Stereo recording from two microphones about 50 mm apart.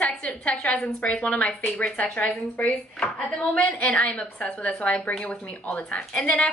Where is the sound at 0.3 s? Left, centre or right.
Left.